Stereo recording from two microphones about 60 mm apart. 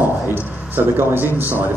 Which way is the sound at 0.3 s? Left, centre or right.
Right.